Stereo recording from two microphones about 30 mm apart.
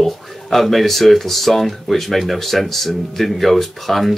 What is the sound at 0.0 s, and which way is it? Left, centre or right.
Speech, centre.